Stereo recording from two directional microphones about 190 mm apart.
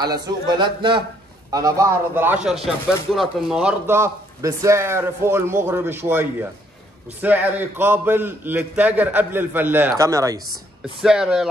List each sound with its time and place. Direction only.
0.0 s a man's voice: 20° right (ahead or behind); by 3.7 s centre (ahead or behind)
3.8 s a man's voice: 15° right (ahead or behind)
10.5 s speech: centre (ahead or behind)